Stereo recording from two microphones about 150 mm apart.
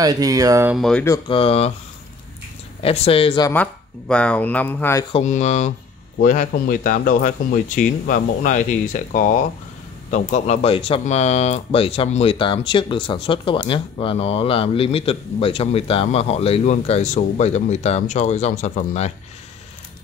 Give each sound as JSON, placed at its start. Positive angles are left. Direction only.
{"t": 0.0, "sound": "speech", "side_deg": -25}
{"t": 0.7, "sound": "speech", "side_deg": 5}
{"t": 1.3, "sound": "speech", "side_deg": 40}
{"t": 2.8, "sound": "speech", "side_deg": 40}
{"t": 4.1, "sound": "speech", "side_deg": 10}
{"t": 5.2, "sound": "speech", "side_deg": 50}